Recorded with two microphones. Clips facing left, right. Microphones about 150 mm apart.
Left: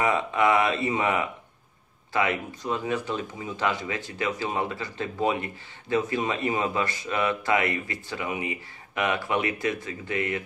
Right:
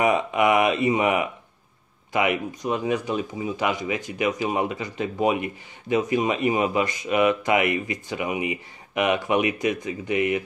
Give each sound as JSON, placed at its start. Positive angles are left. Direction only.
{"t": 0.0, "sound": "speech", "side_deg": -15}